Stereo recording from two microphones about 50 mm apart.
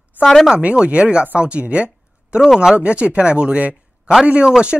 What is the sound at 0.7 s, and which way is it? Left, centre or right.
A man's voice, right.